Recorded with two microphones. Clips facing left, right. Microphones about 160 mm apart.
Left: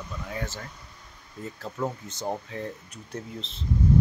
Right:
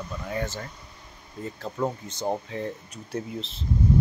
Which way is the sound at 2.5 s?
Centre (ahead or behind).